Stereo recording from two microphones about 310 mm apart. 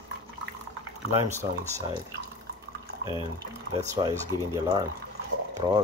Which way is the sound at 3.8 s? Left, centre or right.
Centre.